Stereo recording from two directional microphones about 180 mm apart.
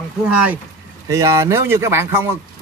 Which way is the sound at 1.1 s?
15° right (ahead or behind).